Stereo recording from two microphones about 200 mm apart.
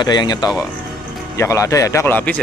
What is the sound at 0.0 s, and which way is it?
Speech, 20° left (ahead or behind).